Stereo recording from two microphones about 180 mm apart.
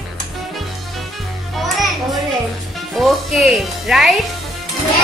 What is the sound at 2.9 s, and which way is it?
Music, centre (ahead or behind).